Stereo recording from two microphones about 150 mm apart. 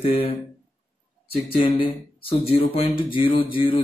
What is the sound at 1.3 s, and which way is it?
Speech, 35° left (ahead or behind).